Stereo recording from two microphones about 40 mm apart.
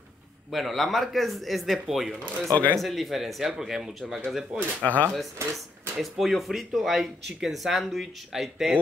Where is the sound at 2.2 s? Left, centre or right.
Left.